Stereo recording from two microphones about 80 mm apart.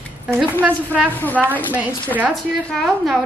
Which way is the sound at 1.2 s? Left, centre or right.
Left.